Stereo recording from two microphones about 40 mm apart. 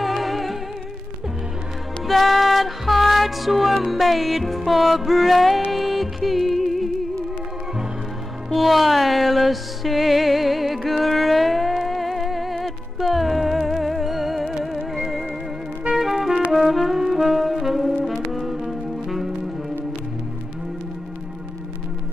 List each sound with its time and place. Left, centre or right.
0.0 s music: centre
2.0 s music: centre
8.5 s music: centre
16.5 s brass instrument: centre
18.0 s music: centre